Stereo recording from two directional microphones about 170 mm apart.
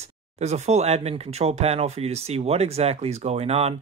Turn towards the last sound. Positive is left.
turn(degrees=-40)  # may be behind; listen again after turning